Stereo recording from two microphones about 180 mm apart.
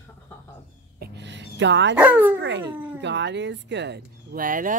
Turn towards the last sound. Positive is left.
turn(degrees=-50)  # may be behind; listen again after turning